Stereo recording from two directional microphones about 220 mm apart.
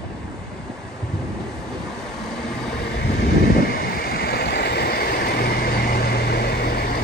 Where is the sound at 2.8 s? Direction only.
45° left (ahead or behind).